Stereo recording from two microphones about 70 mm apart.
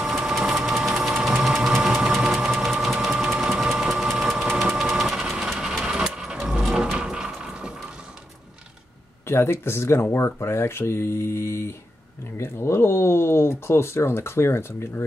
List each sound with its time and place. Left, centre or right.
0.0 s sewing machine: centre
3.5 s engine: centre
4.8 s sewing machine: centre
5.5 s vehicle: centre
9.3 s speech: left